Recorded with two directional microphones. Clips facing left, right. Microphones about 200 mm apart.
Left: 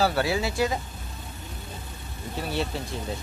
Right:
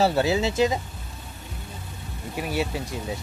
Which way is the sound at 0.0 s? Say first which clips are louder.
Right 3 dB; 25° right (ahead or behind).